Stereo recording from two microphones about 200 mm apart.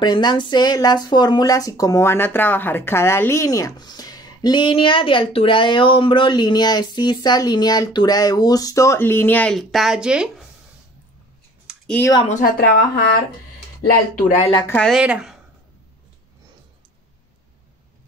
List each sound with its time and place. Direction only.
0.0 s speech: 20° left (ahead or behind); by 10.4 s 5° right (ahead or behind)
11.6 s a sound: 5° left (ahead or behind)
12.3 s speech: 45° left (ahead or behind)
14.1 s speech: 35° left (ahead or behind)
14.7 s speech: centre (ahead or behind)